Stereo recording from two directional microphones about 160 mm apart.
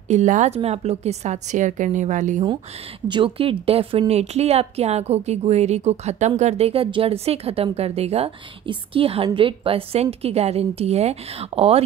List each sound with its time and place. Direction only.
0.1 s a woman's voice: 50° right (ahead or behind)
3.1 s a woman's voice: 35° right (ahead or behind)